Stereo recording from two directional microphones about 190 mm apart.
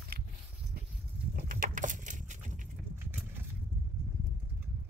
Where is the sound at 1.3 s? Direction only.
45° right (ahead or behind).